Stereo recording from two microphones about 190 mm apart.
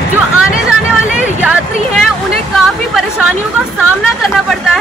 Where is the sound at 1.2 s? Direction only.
5° right (ahead or behind).